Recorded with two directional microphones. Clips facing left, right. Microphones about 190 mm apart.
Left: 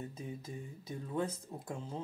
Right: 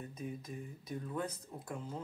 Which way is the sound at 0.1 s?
25° left (ahead or behind).